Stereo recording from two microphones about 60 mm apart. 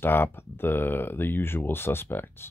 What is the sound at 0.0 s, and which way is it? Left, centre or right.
Speech, left.